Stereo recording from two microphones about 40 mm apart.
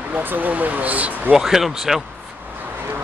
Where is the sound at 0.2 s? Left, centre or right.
Right.